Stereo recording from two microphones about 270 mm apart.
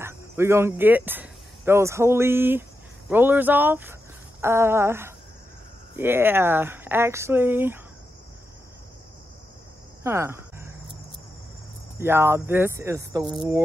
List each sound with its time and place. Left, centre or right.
0.0 s speech: centre
10.0 s a sound: centre
12.0 s speech: centre